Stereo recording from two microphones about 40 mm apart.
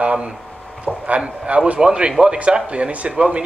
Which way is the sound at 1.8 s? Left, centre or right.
Right.